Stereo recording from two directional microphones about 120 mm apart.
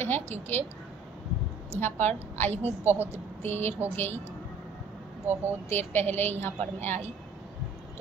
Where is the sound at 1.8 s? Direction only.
20° left (ahead or behind).